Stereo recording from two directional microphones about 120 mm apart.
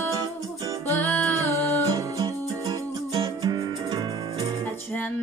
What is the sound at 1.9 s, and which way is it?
Music, 35° right (ahead or behind).